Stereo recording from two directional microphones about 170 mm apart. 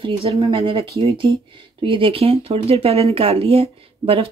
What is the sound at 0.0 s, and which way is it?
Speech, 35° right (ahead or behind).